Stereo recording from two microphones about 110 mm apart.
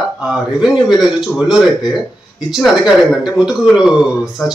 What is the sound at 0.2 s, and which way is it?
A man's voice, 5° right (ahead or behind).